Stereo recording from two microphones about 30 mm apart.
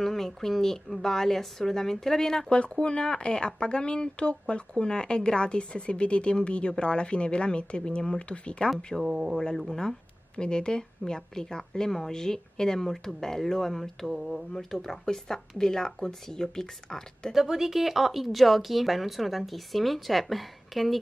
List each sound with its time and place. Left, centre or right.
0.0 s speech: centre
2.8 s speech: left
9.0 s speech: right
10.3 s speech: left; by 14.1 s centre
14.1 s speech: centre
14.6 s speech: centre
15.0 s speech: centre
17.3 s speech: centre